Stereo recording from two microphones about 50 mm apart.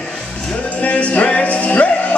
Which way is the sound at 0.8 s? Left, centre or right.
Left.